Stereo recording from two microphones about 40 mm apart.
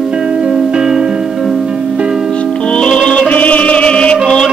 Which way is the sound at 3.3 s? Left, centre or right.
Left.